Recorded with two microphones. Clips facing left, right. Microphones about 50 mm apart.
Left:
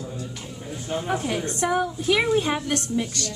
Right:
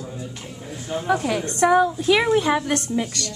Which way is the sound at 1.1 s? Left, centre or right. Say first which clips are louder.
Right 6 dB; right.